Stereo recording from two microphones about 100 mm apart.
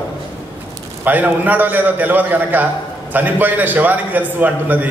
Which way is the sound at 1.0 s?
15° right (ahead or behind).